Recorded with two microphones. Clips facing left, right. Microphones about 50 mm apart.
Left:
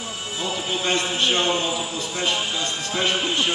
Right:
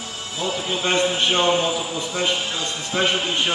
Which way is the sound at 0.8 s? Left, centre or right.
Centre.